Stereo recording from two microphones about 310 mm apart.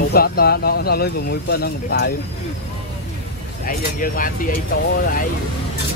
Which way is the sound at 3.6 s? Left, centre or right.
Left.